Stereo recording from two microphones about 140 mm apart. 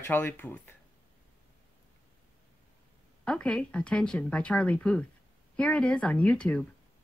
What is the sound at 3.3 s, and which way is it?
Speech, 5° left (ahead or behind).